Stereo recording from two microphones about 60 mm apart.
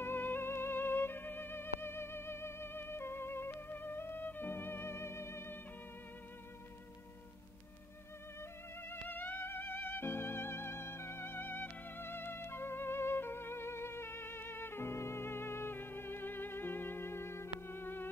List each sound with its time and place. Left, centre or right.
0.0 s music: left
8.4 s music: left